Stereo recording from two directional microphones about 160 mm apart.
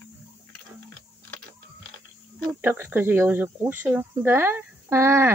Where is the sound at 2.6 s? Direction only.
15° right (ahead or behind).